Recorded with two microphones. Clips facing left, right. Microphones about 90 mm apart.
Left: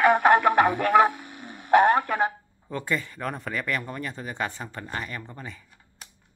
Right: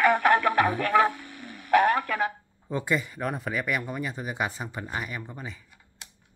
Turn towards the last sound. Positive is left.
turn(degrees=-5)  # may be behind; listen again after turning